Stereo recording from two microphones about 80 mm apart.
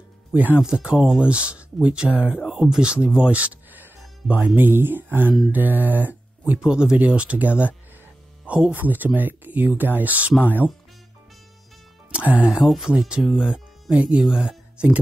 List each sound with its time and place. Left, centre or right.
0.3 s speech: right
0.6 s speech: centre
12.1 s speech: centre
12.4 s speech: centre